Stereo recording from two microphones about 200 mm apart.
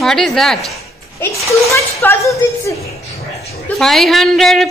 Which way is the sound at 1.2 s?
15° left (ahead or behind).